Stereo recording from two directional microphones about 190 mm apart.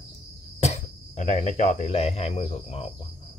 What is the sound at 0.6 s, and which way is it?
Speech, 40° left (ahead or behind).